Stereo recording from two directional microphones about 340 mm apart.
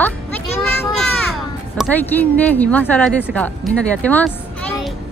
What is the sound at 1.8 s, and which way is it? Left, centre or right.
A woman's voice, centre.